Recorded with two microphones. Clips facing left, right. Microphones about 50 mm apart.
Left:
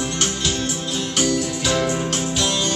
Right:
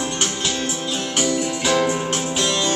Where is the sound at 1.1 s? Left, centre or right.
Centre.